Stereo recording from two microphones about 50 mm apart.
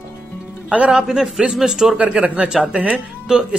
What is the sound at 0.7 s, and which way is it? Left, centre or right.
Speech, right.